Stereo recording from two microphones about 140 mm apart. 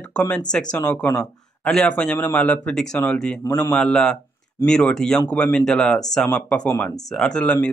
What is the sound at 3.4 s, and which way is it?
Speech, 25° left (ahead or behind).